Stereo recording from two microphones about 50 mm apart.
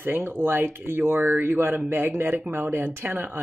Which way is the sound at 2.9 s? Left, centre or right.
Right.